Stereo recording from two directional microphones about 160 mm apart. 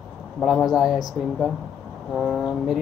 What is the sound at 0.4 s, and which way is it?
Speech, centre (ahead or behind).